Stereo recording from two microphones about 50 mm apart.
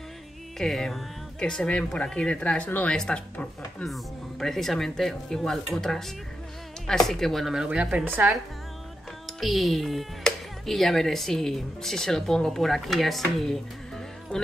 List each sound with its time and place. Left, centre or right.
0.6 s speech: centre
3.8 s speech: centre
7.6 s speech: right
8.0 s speech: right
9.4 s speech: centre
14.3 s speech: left